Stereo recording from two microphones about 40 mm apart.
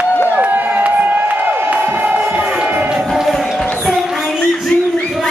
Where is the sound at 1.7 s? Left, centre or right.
Right.